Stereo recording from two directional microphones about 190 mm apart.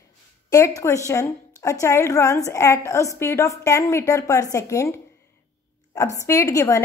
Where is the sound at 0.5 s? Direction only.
15° left (ahead or behind).